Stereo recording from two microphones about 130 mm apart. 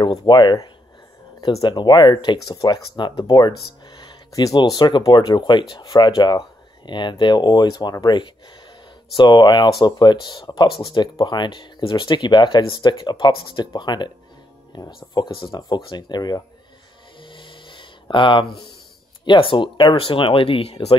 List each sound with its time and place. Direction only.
0.0 s speech: 35° left (ahead or behind)
17.2 s a sound: 40° left (ahead or behind)
19.2 s speech: 40° left (ahead or behind)